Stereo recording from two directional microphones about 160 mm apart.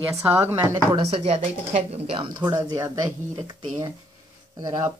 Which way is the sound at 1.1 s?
40° right (ahead or behind).